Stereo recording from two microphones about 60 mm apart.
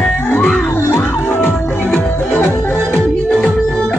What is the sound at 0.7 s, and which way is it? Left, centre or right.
Music, left.